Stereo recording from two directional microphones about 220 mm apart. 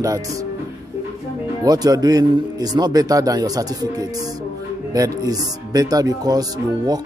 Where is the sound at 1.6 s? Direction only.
15° right (ahead or behind).